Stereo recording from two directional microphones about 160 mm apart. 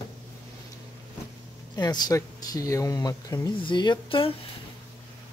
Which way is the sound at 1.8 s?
25° left (ahead or behind).